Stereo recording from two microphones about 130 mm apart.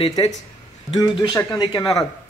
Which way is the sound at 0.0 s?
35° left (ahead or behind).